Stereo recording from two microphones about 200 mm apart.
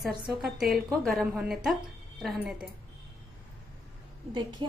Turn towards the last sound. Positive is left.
turn(degrees=-25)  # may be behind; listen again after turning